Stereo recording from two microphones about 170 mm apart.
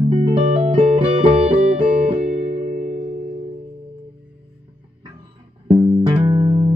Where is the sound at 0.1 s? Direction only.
30° right (ahead or behind).